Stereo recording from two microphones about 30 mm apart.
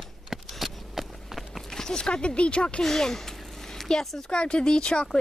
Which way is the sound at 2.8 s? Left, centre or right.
Centre.